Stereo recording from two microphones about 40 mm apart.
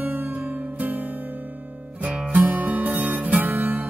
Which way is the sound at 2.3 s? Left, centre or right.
Right.